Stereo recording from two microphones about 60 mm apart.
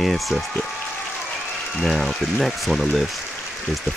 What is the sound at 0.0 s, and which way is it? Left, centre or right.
Speech, centre.